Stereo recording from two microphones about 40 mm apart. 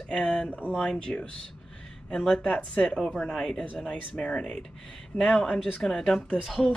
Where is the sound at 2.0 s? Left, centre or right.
Centre.